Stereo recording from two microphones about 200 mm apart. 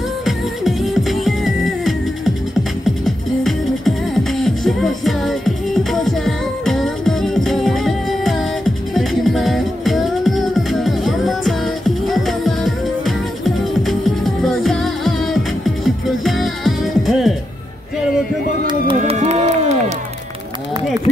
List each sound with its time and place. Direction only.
0.2 s music: centre (ahead or behind)
3.4 s music: centre (ahead or behind)
18.9 s run: 35° right (ahead or behind)